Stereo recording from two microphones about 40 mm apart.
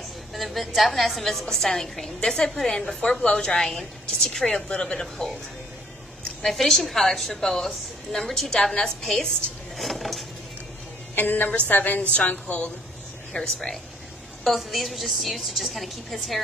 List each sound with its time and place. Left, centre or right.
0.3 s a woman's voice: centre
1.5 s a woman's voice: centre
5.0 s a woman's voice: centre
6.4 s a woman's voice: centre
9.8 s a woman's voice: centre
11.1 s a woman's voice: left
11.5 s a woman's voice: left
12.0 s a woman's voice: left
13.3 s a woman's voice: centre
14.4 s a woman's voice: centre